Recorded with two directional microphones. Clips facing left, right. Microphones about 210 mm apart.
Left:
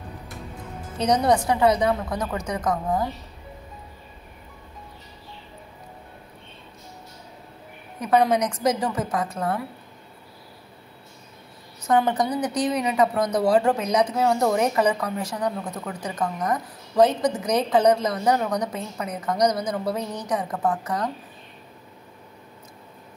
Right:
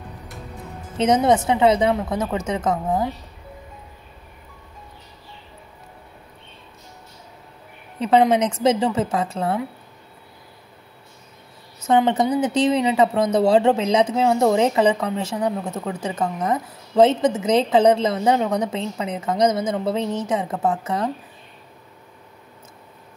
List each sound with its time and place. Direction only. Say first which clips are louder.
0.9 s speech: right 3 dB; 25° right (ahead or behind)
8.0 s speech: right 3 dB; 25° right (ahead or behind)
11.9 s speech: right 4 dB; 25° right (ahead or behind)